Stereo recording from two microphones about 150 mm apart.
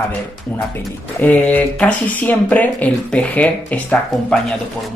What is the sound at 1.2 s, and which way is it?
Speech, 10° left (ahead or behind).